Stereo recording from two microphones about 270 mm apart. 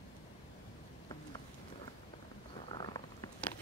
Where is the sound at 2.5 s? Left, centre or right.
Centre.